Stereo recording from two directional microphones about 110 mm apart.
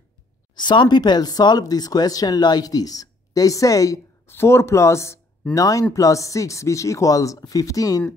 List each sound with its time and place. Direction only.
0.6 s speech: 45° left (ahead or behind)